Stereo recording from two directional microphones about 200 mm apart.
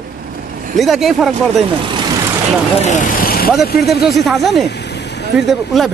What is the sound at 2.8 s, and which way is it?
Vehicle, 40° left (ahead or behind).